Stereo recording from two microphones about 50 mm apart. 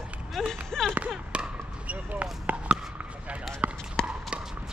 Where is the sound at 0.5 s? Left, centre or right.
Centre.